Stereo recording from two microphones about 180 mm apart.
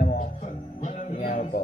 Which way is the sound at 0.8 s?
45° left (ahead or behind).